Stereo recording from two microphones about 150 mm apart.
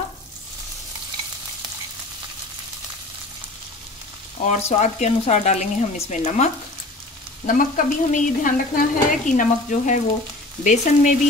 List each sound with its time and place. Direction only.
4.5 s speech: 50° left (ahead or behind)
7.4 s stir: 65° left (ahead or behind)